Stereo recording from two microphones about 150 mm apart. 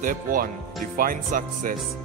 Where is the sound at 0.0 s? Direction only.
65° right (ahead or behind).